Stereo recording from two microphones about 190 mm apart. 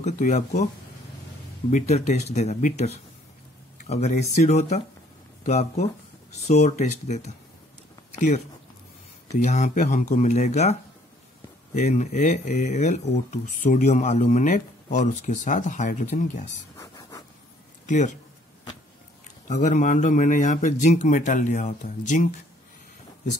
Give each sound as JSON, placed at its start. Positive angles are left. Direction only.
{"t": 0.0, "sound": "speech", "side_deg": 35}
{"t": 1.7, "sound": "speech", "side_deg": 40}
{"t": 9.3, "sound": "speech", "side_deg": 40}
{"t": 16.7, "sound": "a sound", "side_deg": 15}
{"t": 17.8, "sound": "a man's voice", "side_deg": 40}
{"t": 19.4, "sound": "speech", "side_deg": 40}